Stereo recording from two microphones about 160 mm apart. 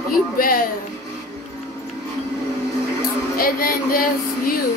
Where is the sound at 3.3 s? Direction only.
65° left (ahead or behind).